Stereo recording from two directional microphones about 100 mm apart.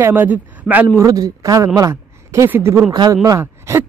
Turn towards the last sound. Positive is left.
turn(degrees=-25)  # may be behind; listen again after turning